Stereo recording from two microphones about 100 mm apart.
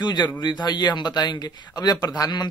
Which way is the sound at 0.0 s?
45° left (ahead or behind).